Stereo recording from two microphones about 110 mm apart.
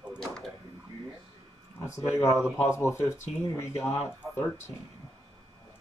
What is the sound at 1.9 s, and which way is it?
Speech, 30° left (ahead or behind).